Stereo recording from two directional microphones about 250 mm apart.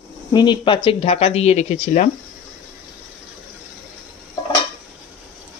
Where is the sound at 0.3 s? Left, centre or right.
Centre.